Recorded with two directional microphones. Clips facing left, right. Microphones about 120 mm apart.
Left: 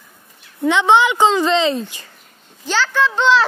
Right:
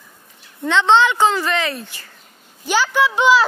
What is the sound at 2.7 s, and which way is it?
Speech, 10° right (ahead or behind).